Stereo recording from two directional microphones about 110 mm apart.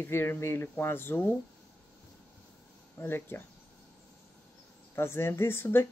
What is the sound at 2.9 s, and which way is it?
Speech, 20° left (ahead or behind).